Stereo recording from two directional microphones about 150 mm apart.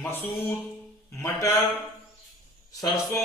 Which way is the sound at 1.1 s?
20° left (ahead or behind).